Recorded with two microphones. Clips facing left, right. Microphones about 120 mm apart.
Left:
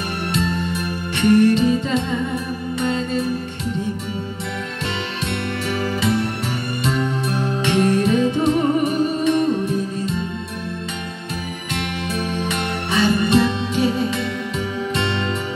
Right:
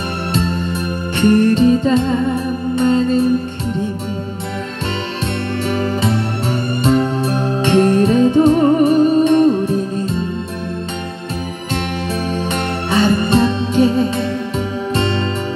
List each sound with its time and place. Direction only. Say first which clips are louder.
1.1 s music: right 2 dB; 35° right (ahead or behind)
5.7 s music: right 3 dB; 30° right (ahead or behind)
12.1 s music: right 3 dB; 35° right (ahead or behind)